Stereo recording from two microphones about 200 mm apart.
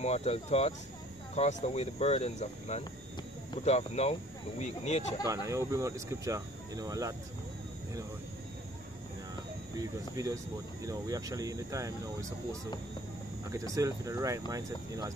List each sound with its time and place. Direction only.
0.0 s speech: 35° left (ahead or behind)
5.2 s speech: 15° right (ahead or behind)
9.8 s speech: 15° right (ahead or behind)
13.7 s speech: 15° right (ahead or behind)